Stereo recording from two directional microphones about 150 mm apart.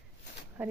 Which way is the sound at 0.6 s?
10° right (ahead or behind).